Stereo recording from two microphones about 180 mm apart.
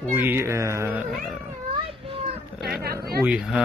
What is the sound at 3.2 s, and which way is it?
Speech, 5° right (ahead or behind).